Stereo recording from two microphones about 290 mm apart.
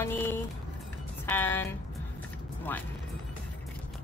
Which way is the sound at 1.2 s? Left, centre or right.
Centre.